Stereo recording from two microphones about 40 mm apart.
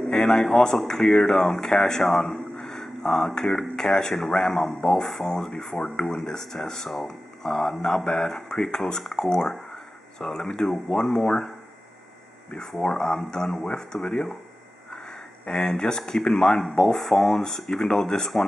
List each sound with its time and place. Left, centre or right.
0.1 s speech: centre
2.1 s a sound: centre
3.5 s speech: centre
10.9 s speech: centre
12.7 s speech: centre
14.0 s speech: left
15.4 s speech: left